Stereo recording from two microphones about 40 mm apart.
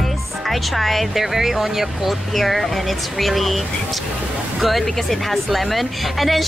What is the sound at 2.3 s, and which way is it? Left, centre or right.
Speech, centre.